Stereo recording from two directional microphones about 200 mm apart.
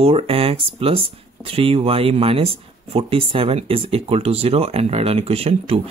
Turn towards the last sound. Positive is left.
turn(degrees=-30)  # may be behind; listen again after turning